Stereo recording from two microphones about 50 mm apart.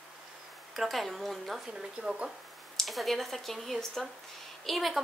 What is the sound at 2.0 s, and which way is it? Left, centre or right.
Speech, centre.